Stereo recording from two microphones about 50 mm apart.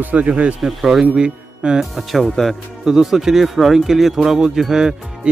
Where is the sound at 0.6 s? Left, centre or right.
Centre.